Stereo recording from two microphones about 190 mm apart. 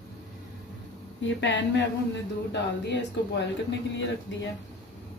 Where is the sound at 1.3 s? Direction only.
75° left (ahead or behind).